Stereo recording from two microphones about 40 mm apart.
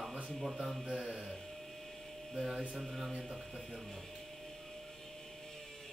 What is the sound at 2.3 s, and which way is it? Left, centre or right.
Mantra, centre.